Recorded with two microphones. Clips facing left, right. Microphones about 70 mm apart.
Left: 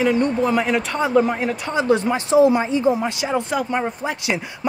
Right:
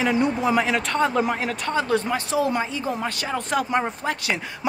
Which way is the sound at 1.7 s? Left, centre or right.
Centre.